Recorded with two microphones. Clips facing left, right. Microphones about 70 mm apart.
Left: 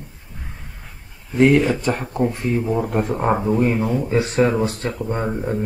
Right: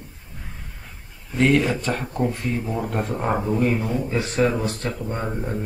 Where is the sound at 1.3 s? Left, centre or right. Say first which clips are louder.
Left 4 dB; centre.